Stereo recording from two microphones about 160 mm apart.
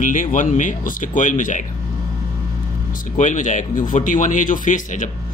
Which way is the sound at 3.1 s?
50° left (ahead or behind).